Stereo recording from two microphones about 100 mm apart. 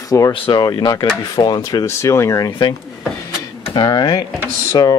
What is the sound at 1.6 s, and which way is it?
Speech, 35° left (ahead or behind).